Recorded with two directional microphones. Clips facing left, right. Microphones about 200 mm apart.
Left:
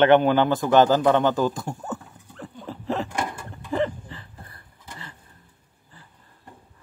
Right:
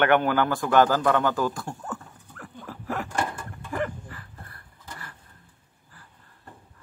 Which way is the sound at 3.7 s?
25° left (ahead or behind).